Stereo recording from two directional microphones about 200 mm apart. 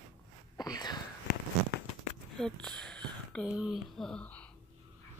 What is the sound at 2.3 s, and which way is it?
Speech, 5° left (ahead or behind).